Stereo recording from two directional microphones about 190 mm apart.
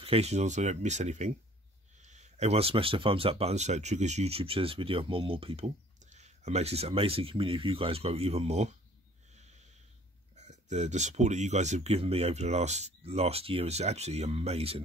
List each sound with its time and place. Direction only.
0.0 s speech: 30° right (ahead or behind)
9.3 s snort: 35° right (ahead or behind)
10.3 s speech: 35° right (ahead or behind)